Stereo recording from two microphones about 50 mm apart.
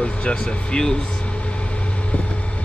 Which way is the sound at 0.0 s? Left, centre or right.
Centre.